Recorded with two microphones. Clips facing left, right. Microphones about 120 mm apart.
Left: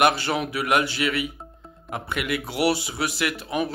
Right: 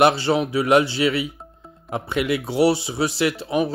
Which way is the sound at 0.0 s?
25° right (ahead or behind).